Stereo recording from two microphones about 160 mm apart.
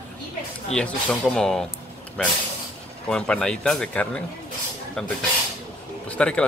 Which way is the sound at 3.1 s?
5° left (ahead or behind).